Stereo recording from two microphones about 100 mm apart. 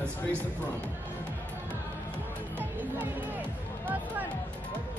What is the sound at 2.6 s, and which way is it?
Music, 20° right (ahead or behind).